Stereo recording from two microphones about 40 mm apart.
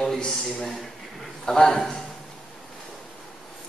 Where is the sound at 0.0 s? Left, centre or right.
Centre.